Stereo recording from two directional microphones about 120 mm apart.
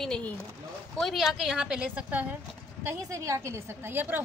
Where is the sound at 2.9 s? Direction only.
25° right (ahead or behind).